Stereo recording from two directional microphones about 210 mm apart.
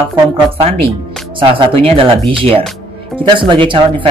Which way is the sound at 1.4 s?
25° right (ahead or behind).